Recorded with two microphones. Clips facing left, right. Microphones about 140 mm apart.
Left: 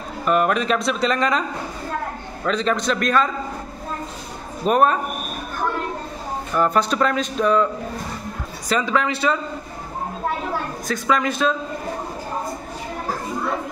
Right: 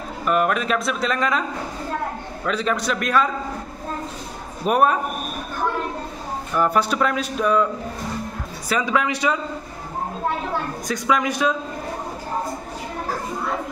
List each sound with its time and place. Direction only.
0.3 s speech: centre (ahead or behind)
2.4 s speech: 10° right (ahead or behind)
4.6 s speech: 10° right (ahead or behind)
6.5 s speech: 10° right (ahead or behind)
8.6 s speech: 10° right (ahead or behind)
10.9 s speech: 15° right (ahead or behind)